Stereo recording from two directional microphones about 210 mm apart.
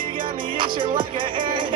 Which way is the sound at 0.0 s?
25° right (ahead or behind).